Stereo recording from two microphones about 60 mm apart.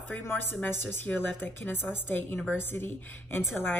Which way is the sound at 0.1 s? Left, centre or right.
Left.